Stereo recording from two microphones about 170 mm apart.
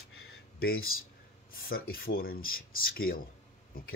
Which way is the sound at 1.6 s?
60° left (ahead or behind).